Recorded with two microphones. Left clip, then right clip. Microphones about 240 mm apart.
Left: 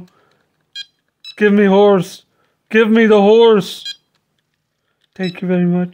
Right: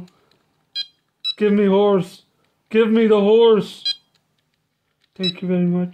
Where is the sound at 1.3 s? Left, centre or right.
Left.